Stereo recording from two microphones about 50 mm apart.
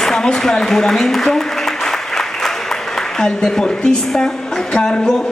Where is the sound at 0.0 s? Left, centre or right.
Centre.